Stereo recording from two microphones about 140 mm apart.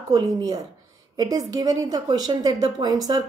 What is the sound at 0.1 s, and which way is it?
A woman's voice, 30° right (ahead or behind).